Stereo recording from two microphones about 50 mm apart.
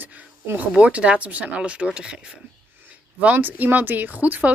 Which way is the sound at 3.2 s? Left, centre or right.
Right.